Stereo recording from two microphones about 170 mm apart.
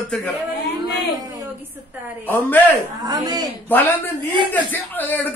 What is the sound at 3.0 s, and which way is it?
Speech, 25° right (ahead or behind).